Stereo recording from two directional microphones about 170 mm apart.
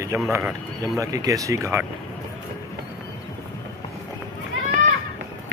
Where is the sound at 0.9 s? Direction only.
20° right (ahead or behind).